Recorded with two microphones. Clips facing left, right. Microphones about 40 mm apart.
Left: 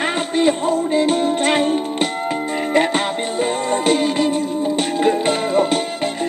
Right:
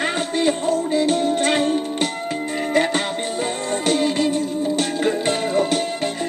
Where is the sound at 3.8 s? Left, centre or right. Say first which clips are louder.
Left 1 dB; centre.